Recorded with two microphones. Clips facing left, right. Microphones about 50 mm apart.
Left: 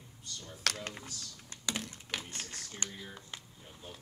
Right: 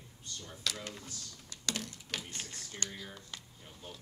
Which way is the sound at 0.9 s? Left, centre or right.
Left.